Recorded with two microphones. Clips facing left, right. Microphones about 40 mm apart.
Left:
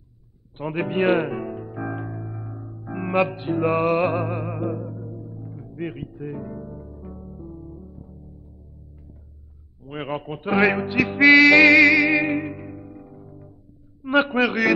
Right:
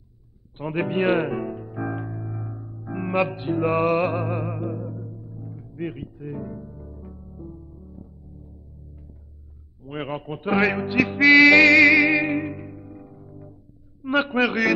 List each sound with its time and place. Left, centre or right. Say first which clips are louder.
0.6 s music: left 1 dB; centre
4.6 s speech: left 3 dB; centre
4.8 s music: left 1 dB; centre
6.1 s speech: left 1 dB; centre
6.8 s music: left 2 dB; centre
7.1 s music: left 5 dB; centre
7.3 s music: left 1 dB; centre
9.8 s speech: left 1 dB; centre
11.1 s music: left 1 dB; centre
14.0 s speech: left 2 dB; centre